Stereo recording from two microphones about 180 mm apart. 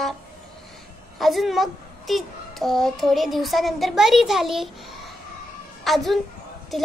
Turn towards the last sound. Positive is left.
turn(degrees=0)  # may be behind; listen again after turning